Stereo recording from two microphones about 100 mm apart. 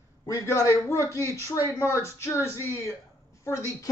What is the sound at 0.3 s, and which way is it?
A man's voice, 30° left (ahead or behind).